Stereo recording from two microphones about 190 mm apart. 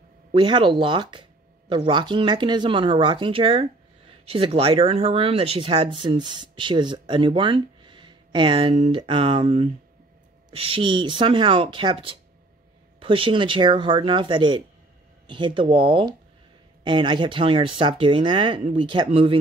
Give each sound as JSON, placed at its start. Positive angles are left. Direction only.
{"t": 0.3, "sound": "speech", "side_deg": -25}